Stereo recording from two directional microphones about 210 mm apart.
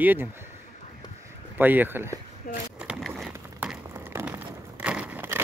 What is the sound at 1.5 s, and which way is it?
Speech, 10° right (ahead or behind).